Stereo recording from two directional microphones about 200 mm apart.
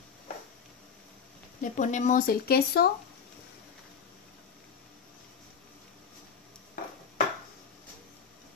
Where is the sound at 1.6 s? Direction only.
40° left (ahead or behind).